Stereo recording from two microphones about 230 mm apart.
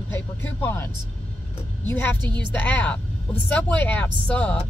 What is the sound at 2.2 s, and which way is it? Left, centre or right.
Speech, centre.